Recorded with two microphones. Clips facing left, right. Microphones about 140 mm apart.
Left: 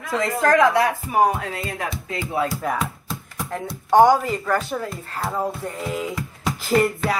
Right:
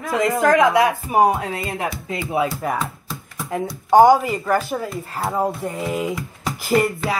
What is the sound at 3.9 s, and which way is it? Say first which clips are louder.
Speech: right 2 dB; 10° right (ahead or behind).